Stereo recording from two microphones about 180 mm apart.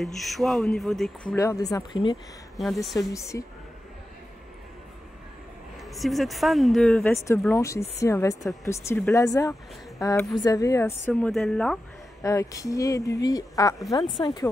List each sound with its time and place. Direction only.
0.0 s a woman's voice: centre (ahead or behind)
1.3 s speech: 15° left (ahead or behind)
2.5 s speech: centre (ahead or behind)
3.0 s speech: 15° left (ahead or behind)
5.8 s a woman's voice: centre (ahead or behind)
7.5 s speech: 15° left (ahead or behind)
12.2 s speech: 20° left (ahead or behind)